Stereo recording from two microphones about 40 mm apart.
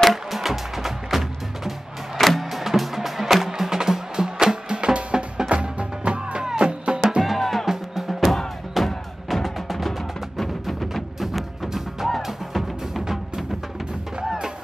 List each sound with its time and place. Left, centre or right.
0.0 s music: centre; by 7.2 s right
7.2 s music: centre
7.6 s music: centre
8.1 s music: centre